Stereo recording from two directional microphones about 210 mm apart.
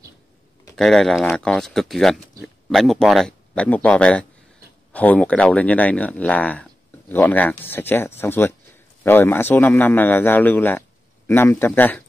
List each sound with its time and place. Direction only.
0.7 s speech: centre (ahead or behind)